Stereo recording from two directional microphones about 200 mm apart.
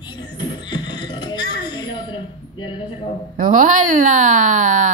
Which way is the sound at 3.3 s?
40° right (ahead or behind).